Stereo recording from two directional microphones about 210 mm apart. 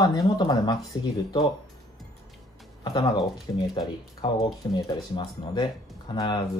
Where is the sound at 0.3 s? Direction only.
15° left (ahead or behind).